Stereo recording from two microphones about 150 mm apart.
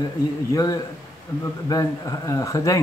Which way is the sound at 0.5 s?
25° left (ahead or behind).